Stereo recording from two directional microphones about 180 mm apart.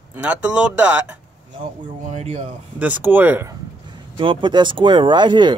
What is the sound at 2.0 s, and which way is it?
Speech, 40° right (ahead or behind).